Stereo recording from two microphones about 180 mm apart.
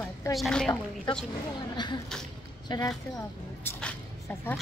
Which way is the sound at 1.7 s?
25° left (ahead or behind).